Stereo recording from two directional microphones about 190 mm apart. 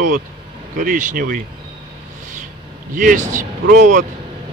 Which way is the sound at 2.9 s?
45° right (ahead or behind).